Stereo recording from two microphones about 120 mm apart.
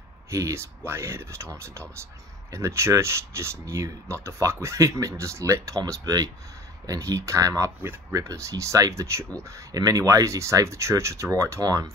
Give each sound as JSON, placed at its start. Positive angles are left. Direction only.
{"t": 0.3, "sound": "speech", "side_deg": -25}